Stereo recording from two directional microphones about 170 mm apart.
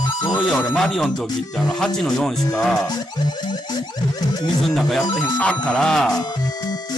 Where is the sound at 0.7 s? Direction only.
Centre (ahead or behind).